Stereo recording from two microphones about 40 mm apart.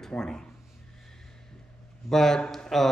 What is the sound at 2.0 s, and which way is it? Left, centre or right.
Speech, centre.